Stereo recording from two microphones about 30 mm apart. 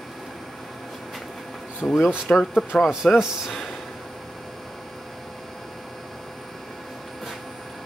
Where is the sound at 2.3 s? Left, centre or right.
Left.